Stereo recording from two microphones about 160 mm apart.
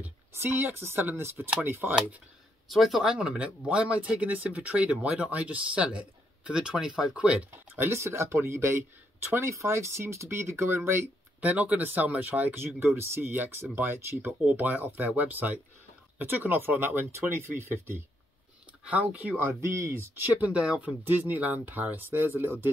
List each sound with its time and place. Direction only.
0.0 s speech: 15° right (ahead or behind)